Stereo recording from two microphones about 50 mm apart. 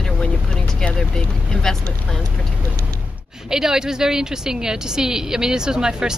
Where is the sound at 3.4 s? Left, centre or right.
Centre.